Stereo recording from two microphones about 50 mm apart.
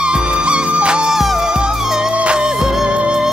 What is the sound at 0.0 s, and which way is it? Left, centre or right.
Music, centre.